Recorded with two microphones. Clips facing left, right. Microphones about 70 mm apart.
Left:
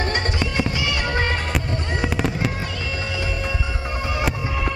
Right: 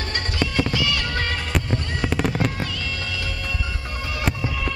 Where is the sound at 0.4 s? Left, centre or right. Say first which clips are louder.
Right 1 dB; left.